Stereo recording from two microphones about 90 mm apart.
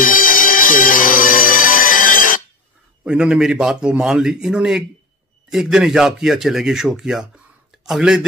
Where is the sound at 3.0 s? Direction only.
10° right (ahead or behind).